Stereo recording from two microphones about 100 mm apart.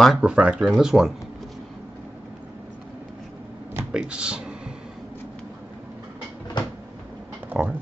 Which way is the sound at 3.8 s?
10° right (ahead or behind).